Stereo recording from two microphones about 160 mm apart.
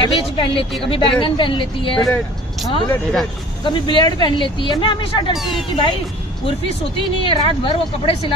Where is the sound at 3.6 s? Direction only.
30° left (ahead or behind).